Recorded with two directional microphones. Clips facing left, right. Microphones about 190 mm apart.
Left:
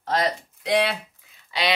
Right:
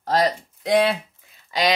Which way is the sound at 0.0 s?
40° right (ahead or behind).